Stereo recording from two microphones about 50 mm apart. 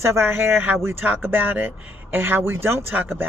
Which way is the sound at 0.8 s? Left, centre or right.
Right.